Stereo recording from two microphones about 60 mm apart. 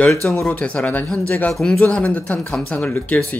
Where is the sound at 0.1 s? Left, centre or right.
Centre.